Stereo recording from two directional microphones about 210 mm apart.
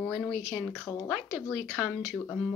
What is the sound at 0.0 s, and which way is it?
Speech, 5° left (ahead or behind).